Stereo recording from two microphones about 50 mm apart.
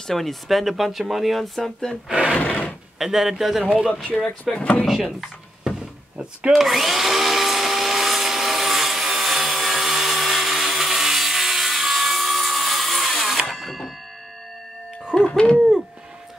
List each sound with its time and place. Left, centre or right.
0.0 s speech: centre
2.0 s speech: centre
2.3 s a sound: left
3.0 s speech: centre
4.6 s speech: left
4.8 s speech: centre
6.5 s drill: centre
13.5 s a sound: centre
15.1 s hoot: centre